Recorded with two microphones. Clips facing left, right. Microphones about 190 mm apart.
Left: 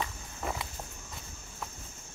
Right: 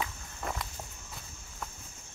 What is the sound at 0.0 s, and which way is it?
Walk, 5° left (ahead or behind).